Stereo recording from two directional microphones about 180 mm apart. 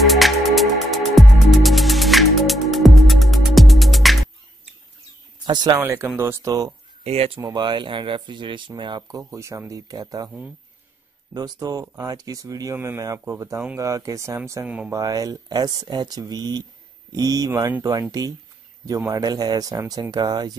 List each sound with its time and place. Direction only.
0.0 s music: centre (ahead or behind)
5.4 s speech: 25° right (ahead or behind)
7.1 s speech: 35° right (ahead or behind)
7.3 s speech: 25° right (ahead or behind)
11.3 s speech: 20° right (ahead or behind)